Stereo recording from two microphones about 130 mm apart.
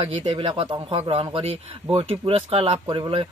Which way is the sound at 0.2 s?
45° right (ahead or behind).